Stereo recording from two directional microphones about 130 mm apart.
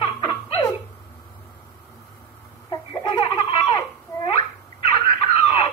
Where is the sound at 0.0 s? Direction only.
45° left (ahead or behind).